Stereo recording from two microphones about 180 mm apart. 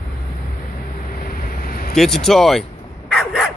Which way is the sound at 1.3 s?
55° left (ahead or behind).